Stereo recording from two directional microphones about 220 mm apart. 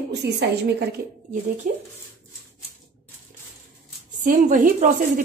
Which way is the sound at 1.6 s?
35° right (ahead or behind).